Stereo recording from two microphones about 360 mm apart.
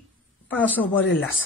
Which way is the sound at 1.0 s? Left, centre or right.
Left.